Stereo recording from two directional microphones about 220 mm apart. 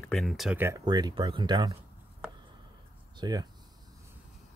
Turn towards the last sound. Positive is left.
turn(degrees=-20)  # may be behind; listen again after turning